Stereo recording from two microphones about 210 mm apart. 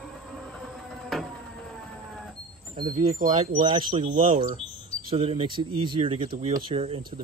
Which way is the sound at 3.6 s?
25° right (ahead or behind).